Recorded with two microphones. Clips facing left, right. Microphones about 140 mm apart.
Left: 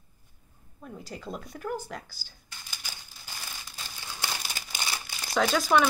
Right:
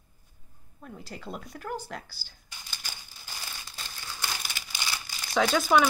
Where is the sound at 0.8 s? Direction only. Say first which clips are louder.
Left 1 dB; centre (ahead or behind).